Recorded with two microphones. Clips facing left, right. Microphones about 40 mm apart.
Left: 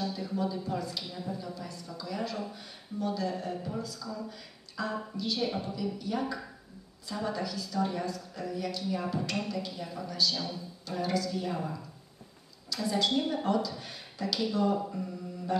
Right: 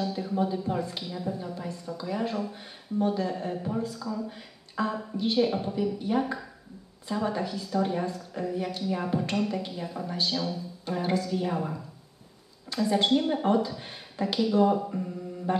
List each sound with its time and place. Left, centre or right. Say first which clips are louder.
0.1 s a sound: right 4 dB; right
1.4 s a woman's voice: right 5 dB; right
5.5 s speech: right 4 dB; centre
5.8 s a woman's voice: right 8 dB; right
10.3 s speech: right 5 dB; centre
10.9 s a woman's voice: right 3 dB; right